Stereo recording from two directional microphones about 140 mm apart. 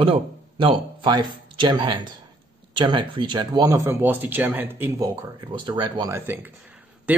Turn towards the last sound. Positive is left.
turn(degrees=-10)  # may be behind; listen again after turning